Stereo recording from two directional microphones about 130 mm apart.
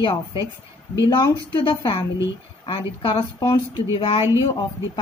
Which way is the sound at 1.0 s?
35° left (ahead or behind).